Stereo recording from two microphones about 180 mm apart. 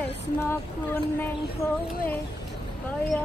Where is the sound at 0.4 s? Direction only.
10° left (ahead or behind).